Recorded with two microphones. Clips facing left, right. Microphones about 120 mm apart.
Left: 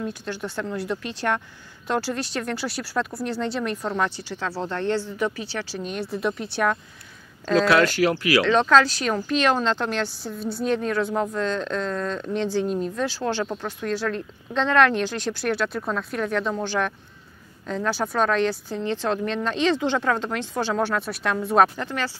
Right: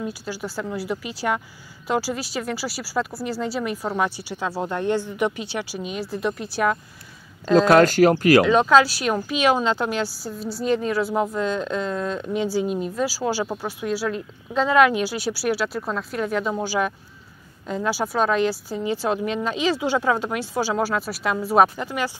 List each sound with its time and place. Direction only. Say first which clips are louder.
0.0 s speech: even; 5° right (ahead or behind)
7.5 s speech: right 4 dB; 45° right (ahead or behind)
8.5 s a woman's voice: right 2 dB; 10° right (ahead or behind)